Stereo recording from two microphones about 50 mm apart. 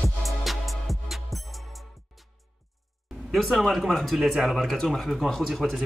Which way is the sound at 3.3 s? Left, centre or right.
Centre.